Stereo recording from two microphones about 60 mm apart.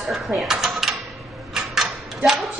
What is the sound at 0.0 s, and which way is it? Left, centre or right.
Speech, centre.